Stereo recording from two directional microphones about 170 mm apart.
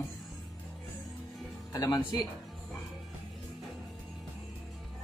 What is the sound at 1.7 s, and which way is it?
Speech, 20° left (ahead or behind).